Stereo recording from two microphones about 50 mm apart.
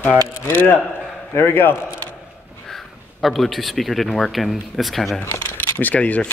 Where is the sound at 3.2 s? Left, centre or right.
Centre.